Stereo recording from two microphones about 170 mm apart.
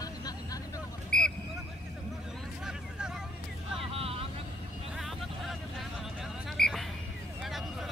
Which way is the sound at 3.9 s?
35° right (ahead or behind).